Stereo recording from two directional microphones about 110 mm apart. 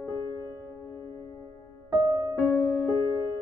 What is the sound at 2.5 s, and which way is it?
Music, 20° left (ahead or behind).